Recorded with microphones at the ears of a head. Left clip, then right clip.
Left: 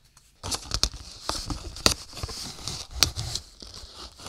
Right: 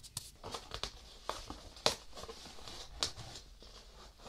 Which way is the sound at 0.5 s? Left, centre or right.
Left.